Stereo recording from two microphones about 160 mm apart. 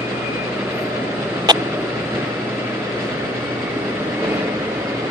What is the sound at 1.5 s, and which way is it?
Vehicle, 25° right (ahead or behind).